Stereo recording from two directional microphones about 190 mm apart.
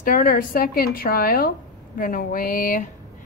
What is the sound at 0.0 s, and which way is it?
A woman's voice, 50° left (ahead or behind).